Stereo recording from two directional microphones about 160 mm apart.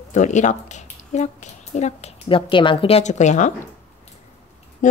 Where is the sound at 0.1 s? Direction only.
50° left (ahead or behind).